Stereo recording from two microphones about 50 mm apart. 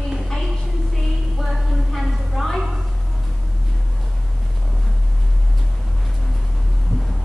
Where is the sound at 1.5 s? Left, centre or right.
Centre.